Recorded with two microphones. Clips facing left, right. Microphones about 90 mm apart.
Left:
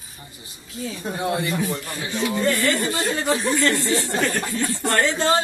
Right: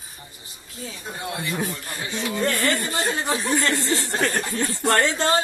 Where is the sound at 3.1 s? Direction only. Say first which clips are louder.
Left 3 dB; 25° right (ahead or behind).